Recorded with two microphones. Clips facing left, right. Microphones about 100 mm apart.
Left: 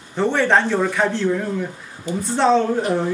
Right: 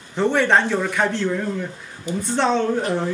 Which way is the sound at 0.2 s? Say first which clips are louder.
Even; centre (ahead or behind).